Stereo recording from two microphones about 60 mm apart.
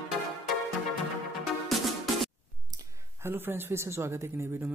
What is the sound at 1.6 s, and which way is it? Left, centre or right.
Music, centre.